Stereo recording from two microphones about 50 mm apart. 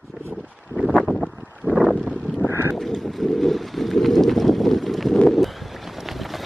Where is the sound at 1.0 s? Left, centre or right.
Centre.